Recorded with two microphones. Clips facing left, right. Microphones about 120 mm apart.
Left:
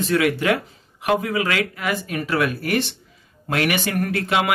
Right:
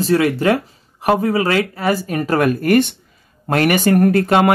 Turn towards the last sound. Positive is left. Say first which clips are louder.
# right 8 dB
turn(degrees=-45)  # may be behind; listen again after turning